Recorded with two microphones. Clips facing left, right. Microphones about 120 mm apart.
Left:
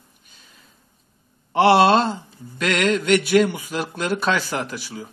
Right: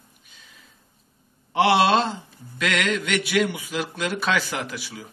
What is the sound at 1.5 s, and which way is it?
Speech, 40° left (ahead or behind).